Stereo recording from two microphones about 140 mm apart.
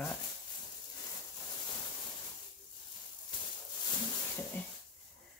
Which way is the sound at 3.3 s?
35° left (ahead or behind).